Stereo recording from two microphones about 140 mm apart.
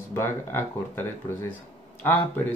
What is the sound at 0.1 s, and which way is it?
Speech, 15° left (ahead or behind).